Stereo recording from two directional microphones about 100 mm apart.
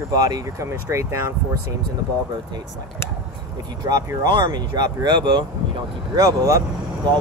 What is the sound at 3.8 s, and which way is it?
Speech, 40° right (ahead or behind).